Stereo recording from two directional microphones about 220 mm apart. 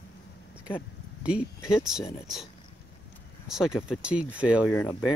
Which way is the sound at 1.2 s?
5° right (ahead or behind).